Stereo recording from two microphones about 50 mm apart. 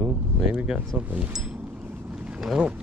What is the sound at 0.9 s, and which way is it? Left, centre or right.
Speech, centre.